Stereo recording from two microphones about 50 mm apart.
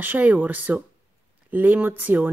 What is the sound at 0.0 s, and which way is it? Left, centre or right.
Speech, right.